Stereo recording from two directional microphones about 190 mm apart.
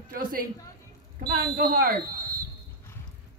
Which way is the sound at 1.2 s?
55° right (ahead or behind).